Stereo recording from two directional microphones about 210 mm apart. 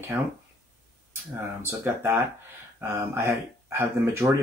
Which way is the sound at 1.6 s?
10° right (ahead or behind).